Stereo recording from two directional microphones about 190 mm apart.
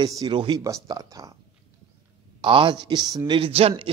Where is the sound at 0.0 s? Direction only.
20° right (ahead or behind).